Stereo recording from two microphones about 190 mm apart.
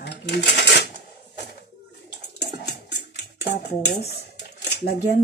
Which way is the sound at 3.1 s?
65° left (ahead or behind).